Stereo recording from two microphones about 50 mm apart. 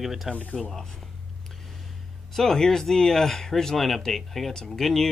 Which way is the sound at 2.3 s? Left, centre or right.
Centre.